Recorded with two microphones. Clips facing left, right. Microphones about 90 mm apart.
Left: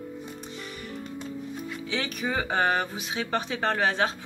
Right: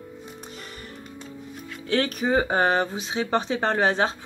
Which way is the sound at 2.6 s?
25° right (ahead or behind).